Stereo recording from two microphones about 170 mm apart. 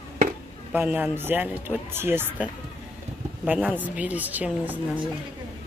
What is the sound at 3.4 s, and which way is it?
Speech, 10° right (ahead or behind).